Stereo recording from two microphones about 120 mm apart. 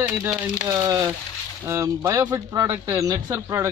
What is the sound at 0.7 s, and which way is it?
A man's voice, 30° right (ahead or behind).